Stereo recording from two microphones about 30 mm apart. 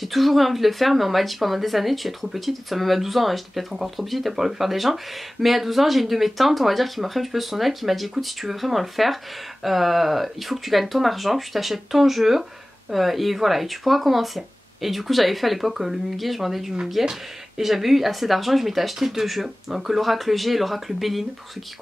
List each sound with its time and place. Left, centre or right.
0.0 s speech: centre